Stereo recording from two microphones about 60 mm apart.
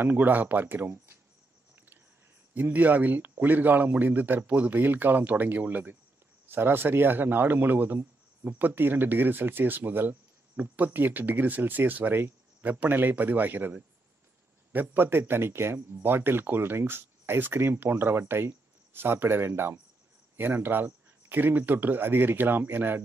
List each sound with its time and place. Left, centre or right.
0.0 s a man's voice: right
2.5 s a man's voice: right